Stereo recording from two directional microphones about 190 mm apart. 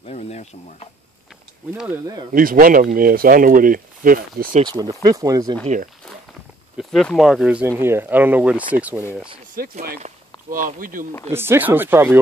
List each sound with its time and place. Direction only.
0.0 s speech: 35° left (ahead or behind)
1.7 s speech: 10° right (ahead or behind)
2.3 s speech: 50° right (ahead or behind)
4.6 s speech: 20° right (ahead or behind)
6.8 s speech: centre (ahead or behind)
9.6 s speech: 50° right (ahead or behind)
11.3 s speech: 10° right (ahead or behind)